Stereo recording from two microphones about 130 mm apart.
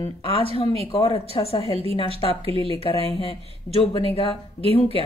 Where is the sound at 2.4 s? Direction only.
45° right (ahead or behind).